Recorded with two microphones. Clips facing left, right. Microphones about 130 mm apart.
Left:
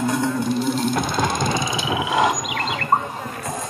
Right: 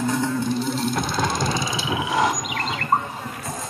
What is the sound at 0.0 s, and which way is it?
Music, 15° left (ahead or behind).